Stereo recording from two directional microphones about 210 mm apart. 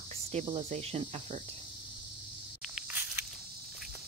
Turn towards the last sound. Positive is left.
turn(degrees=-10)  # may be behind; listen again after turning